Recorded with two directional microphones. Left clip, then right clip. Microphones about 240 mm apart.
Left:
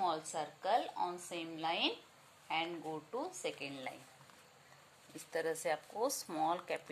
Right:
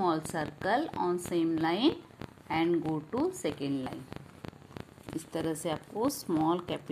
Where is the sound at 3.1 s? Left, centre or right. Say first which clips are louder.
Right 9 dB; centre.